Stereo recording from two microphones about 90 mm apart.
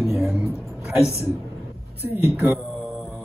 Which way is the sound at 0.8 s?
30° left (ahead or behind).